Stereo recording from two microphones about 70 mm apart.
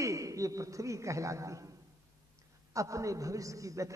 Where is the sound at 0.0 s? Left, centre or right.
Right.